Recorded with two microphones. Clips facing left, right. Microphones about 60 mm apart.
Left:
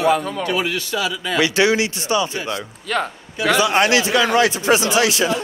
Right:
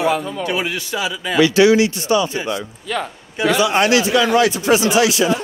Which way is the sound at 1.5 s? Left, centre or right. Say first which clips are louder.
Right 6 dB; left.